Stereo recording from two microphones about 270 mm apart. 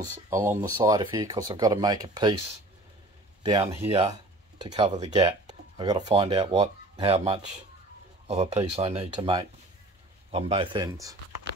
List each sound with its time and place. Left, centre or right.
0.0 s speech: centre
3.4 s speech: right